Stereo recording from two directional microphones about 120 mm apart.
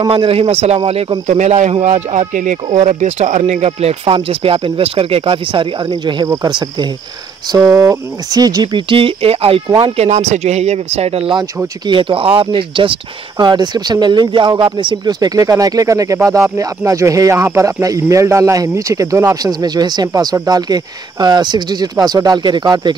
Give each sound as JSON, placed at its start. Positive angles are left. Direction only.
{"t": 0.1, "sound": "speech", "side_deg": -50}
{"t": 1.2, "sound": "speech", "side_deg": -65}
{"t": 2.8, "sound": "speech", "side_deg": -80}
{"t": 6.2, "sound": "speech", "side_deg": -25}
{"t": 7.5, "sound": "speech", "side_deg": -30}
{"t": 8.7, "sound": "speech", "side_deg": -45}
{"t": 10.0, "sound": "speech", "side_deg": -75}
{"t": 11.3, "sound": "speech", "side_deg": -40}